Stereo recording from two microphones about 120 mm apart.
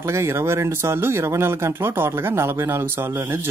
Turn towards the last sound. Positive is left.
turn(degrees=-20)  # may be behind; listen again after turning